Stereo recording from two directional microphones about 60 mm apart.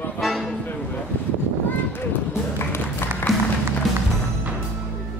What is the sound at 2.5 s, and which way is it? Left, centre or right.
Music, left.